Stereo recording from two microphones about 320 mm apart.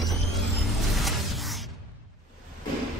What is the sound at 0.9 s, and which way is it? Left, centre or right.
Music, centre.